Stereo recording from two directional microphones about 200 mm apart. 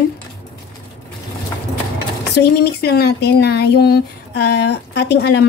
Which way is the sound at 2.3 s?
55° left (ahead or behind).